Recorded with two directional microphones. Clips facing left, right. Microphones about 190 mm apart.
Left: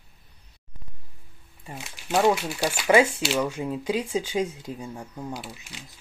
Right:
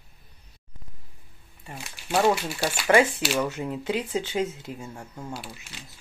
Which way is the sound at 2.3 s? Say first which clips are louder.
Left 1 dB; 5° right (ahead or behind).